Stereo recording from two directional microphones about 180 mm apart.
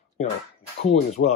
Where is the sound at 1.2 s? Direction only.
75° left (ahead or behind).